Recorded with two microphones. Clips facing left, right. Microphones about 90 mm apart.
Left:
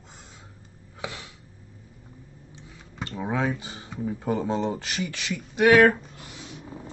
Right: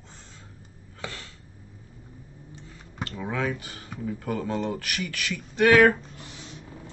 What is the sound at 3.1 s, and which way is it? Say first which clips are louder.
Speech: left 3 dB; 20° left (ahead or behind).